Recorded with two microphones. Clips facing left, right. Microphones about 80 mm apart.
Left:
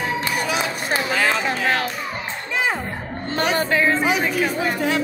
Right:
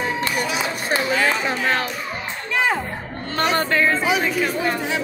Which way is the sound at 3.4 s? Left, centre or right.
Centre.